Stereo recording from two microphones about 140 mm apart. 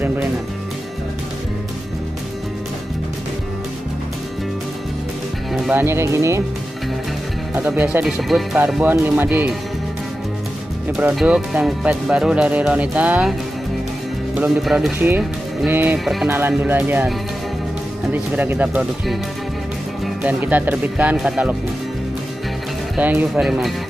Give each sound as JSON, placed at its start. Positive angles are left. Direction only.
{"t": 5.8, "sound": "speech", "side_deg": -20}
{"t": 7.5, "sound": "speech", "side_deg": -10}
{"t": 11.1, "sound": "speech", "side_deg": -10}
{"t": 14.6, "sound": "speech", "side_deg": 0}
{"t": 16.0, "sound": "speech", "side_deg": 0}
{"t": 16.3, "sound": "speech", "side_deg": -15}
{"t": 18.1, "sound": "speech", "side_deg": -10}
{"t": 20.2, "sound": "speech", "side_deg": -10}
{"t": 22.9, "sound": "speech", "side_deg": -10}